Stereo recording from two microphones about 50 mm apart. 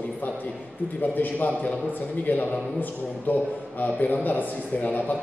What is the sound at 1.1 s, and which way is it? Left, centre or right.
Speech, left.